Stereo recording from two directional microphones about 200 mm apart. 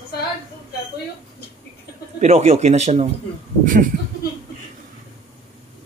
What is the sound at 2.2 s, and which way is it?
A man's voice, 30° right (ahead or behind).